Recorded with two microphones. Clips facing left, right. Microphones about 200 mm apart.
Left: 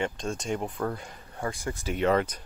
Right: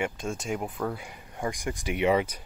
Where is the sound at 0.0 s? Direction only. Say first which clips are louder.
Even; 5° right (ahead or behind).